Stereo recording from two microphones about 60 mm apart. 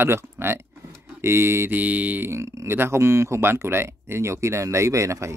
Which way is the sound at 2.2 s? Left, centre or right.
Right.